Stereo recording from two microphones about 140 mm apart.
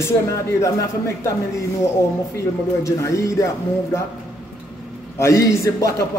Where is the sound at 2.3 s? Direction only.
20° left (ahead or behind).